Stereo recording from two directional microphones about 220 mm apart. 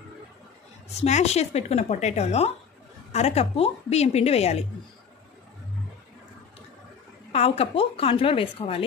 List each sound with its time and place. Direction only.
1.0 s speech: 30° left (ahead or behind)
7.3 s speech: 25° left (ahead or behind)